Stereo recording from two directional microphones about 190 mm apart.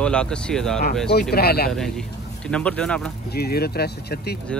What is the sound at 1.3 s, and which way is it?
Speech, 55° left (ahead or behind).